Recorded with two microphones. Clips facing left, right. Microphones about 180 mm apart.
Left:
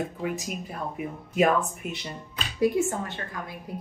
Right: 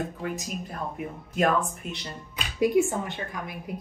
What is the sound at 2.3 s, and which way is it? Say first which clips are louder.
Speech: right 2 dB; 15° right (ahead or behind).